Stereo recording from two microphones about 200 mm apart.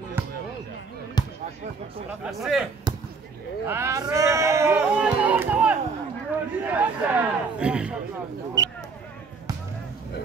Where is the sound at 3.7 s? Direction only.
15° right (ahead or behind).